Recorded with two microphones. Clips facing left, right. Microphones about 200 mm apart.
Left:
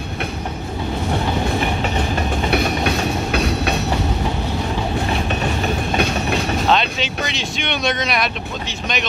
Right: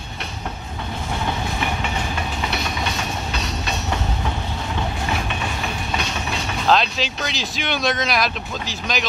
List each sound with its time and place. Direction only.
1.8 s train: 40° left (ahead or behind)
2.5 s train: 60° left (ahead or behind)
5.9 s train: 55° left (ahead or behind)
6.7 s speech: centre (ahead or behind)